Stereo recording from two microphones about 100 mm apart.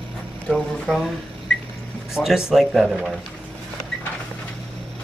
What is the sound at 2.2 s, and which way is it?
Speech, 5° right (ahead or behind).